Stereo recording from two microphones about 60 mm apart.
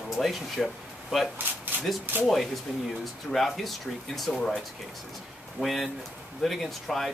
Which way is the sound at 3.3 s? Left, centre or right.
Centre.